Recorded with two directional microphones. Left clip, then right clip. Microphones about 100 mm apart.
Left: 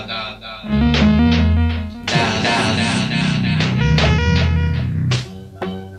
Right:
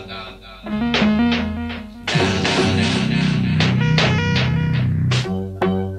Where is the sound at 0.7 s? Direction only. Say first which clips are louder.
Left 2 dB; 20° right (ahead or behind).